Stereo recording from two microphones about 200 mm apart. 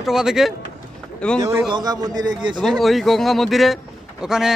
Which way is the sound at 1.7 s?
20° right (ahead or behind).